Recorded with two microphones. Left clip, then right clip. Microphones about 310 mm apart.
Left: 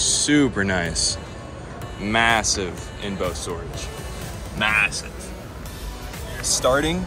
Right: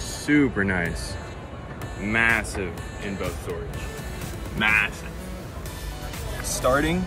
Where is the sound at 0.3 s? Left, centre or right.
Centre.